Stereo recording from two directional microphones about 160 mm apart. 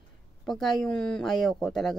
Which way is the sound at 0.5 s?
Centre (ahead or behind).